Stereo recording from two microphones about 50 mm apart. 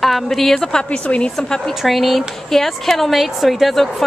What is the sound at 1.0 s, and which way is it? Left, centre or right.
Speech, left.